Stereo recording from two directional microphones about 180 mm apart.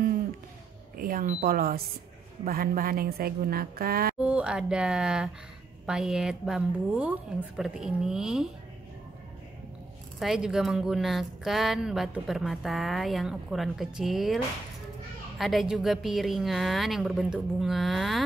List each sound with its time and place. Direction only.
0.9 s a woman's voice: 50° right (ahead or behind)
4.2 s a woman's voice: 5° right (ahead or behind)
10.1 s a woman's voice: centre (ahead or behind)